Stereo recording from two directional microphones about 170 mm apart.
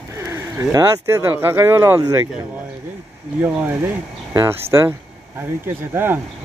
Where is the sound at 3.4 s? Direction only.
10° right (ahead or behind).